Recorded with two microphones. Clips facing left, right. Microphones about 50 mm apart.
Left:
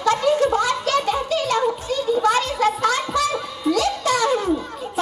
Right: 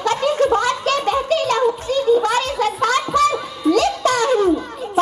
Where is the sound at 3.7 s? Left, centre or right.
Right.